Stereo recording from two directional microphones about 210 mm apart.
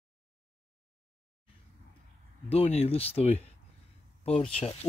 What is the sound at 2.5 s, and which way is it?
Speech, 30° left (ahead or behind).